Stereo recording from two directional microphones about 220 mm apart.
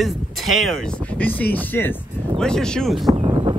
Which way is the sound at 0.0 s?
Centre (ahead or behind).